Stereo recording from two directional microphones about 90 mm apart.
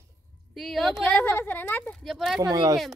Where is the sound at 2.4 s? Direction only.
45° right (ahead or behind).